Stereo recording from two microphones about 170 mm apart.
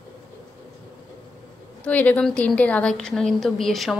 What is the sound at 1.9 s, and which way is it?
A woman's voice, 10° left (ahead or behind).